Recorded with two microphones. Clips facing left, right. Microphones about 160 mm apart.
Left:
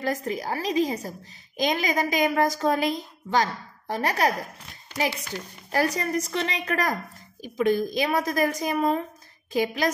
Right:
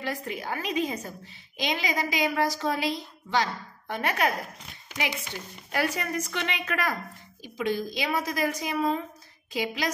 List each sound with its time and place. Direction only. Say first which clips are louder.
0.0 s speech: left 5 dB; 40° left (ahead or behind)
1.6 s a woman's voice: left 4 dB; 45° left (ahead or behind)
7.4 s a woman's voice: left 6 dB; 45° left (ahead or behind)